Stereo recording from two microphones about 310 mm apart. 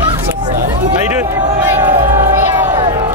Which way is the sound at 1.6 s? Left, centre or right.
Centre.